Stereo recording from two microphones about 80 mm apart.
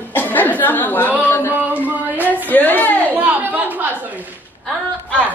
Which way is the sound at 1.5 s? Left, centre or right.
Centre.